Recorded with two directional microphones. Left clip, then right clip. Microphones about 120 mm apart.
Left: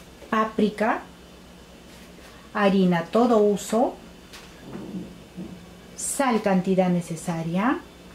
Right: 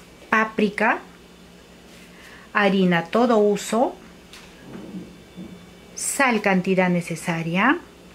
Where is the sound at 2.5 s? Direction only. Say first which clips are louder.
Right 2 dB; 45° right (ahead or behind).